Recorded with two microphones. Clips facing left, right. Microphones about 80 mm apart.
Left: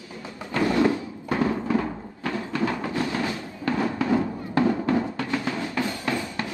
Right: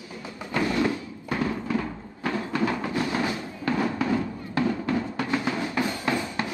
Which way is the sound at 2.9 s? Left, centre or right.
Right.